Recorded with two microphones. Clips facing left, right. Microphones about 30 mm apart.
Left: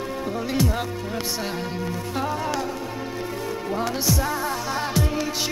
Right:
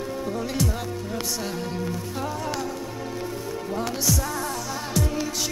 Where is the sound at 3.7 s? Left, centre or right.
Left.